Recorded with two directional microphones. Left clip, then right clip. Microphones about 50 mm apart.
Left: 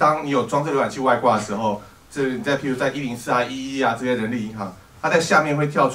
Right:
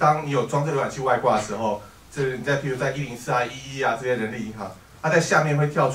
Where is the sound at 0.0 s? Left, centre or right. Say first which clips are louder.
Left 2 dB; left.